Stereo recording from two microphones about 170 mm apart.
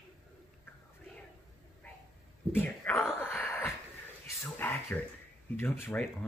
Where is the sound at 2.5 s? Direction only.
10° left (ahead or behind).